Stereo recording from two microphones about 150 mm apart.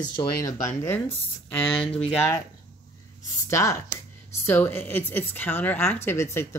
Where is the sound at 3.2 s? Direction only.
20° left (ahead or behind).